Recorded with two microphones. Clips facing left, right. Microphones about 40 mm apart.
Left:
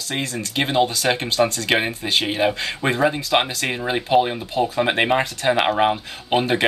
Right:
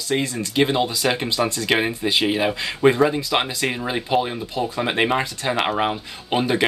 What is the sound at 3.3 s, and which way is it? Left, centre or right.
Speech, centre.